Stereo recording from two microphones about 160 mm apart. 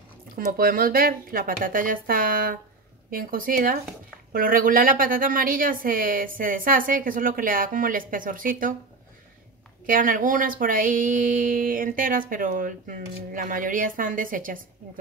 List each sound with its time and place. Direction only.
0.5 s speech: 65° right (ahead or behind)
9.8 s speech: 60° right (ahead or behind)